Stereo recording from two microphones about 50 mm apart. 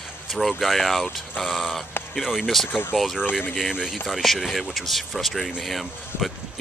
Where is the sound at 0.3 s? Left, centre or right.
Centre.